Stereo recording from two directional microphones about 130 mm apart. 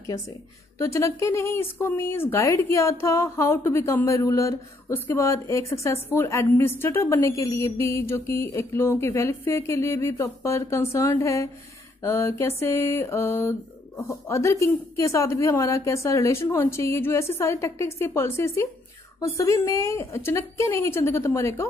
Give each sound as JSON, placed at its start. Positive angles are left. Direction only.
{"t": 0.7, "sound": "speech", "side_deg": 20}